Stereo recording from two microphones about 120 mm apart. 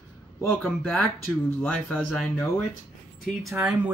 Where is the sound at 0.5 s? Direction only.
5° left (ahead or behind).